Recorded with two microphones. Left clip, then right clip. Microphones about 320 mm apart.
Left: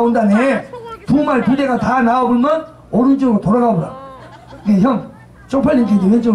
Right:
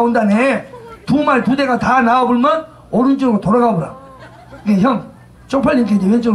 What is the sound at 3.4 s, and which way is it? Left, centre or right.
Speech, centre.